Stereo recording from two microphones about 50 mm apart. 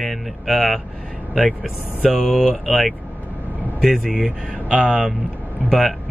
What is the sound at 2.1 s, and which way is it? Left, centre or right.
Speech, centre.